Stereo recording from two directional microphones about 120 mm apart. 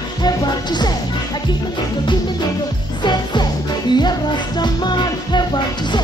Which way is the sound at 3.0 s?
40° left (ahead or behind).